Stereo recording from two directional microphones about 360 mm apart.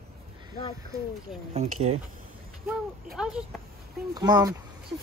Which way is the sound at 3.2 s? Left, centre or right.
Centre.